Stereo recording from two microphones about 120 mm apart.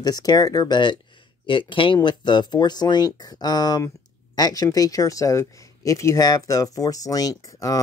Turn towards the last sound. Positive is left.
turn(degrees=30)  # may be behind; listen again after turning